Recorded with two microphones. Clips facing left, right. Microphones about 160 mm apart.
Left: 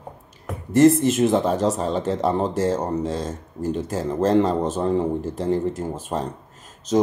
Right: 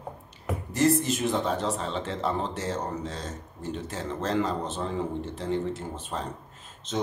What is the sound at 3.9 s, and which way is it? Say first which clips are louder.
Speech: left 10 dB; 40° left (ahead or behind).